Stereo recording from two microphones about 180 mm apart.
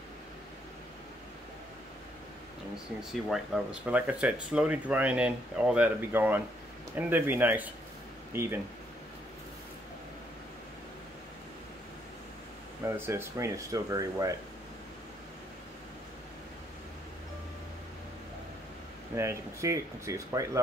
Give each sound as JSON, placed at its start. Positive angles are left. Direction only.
{"t": 3.1, "sound": "speech", "side_deg": 0}
{"t": 12.8, "sound": "speech", "side_deg": -15}
{"t": 19.1, "sound": "speech", "side_deg": -15}